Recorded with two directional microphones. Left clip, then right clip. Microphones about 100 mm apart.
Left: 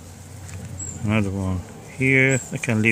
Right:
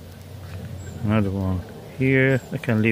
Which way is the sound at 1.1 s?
20° left (ahead or behind).